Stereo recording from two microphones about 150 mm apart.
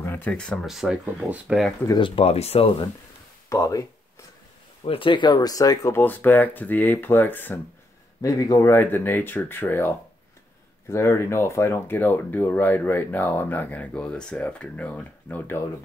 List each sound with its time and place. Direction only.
0.0 s speech: 10° left (ahead or behind); by 1.7 s 5° right (ahead or behind)
1.9 s speech: 35° left (ahead or behind)
3.4 s speech: 20° left (ahead or behind)
4.8 s speech: 35° left (ahead or behind); by 15.6 s 15° left (ahead or behind)